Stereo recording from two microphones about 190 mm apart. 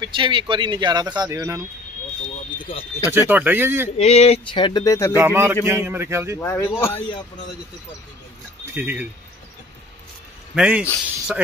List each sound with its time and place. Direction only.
0.1 s speech: 25° right (ahead or behind)
2.6 s speech: 25° left (ahead or behind)
3.1 s speech: 10° right (ahead or behind)
4.0 s speech: 35° left (ahead or behind); by 5.1 s 15° left (ahead or behind)
5.1 s speech: 10° right (ahead or behind)
6.4 s a man's voice: 15° left (ahead or behind)
8.7 s speech: 10° right (ahead or behind)
10.5 s speech: 5° right (ahead or behind)